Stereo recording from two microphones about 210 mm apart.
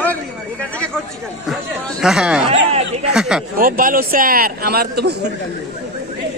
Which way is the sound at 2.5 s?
30° right (ahead or behind).